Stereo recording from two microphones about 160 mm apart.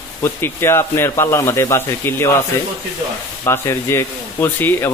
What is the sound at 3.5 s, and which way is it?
Speech, 15° left (ahead or behind).